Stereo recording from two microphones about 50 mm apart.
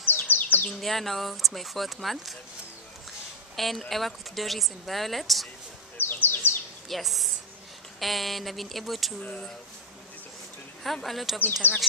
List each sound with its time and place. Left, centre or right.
0.0 s bird: left
0.7 s speech: centre
3.5 s speech: centre
5.9 s bird: left
6.9 s speech: centre
10.8 s speech: centre
11.6 s speech: left